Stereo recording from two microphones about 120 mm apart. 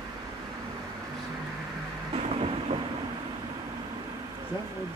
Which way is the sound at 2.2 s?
55° right (ahead or behind).